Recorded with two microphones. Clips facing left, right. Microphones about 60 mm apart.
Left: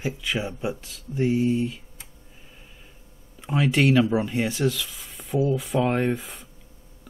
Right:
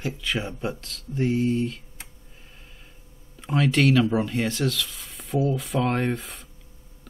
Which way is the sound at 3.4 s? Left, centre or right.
Centre.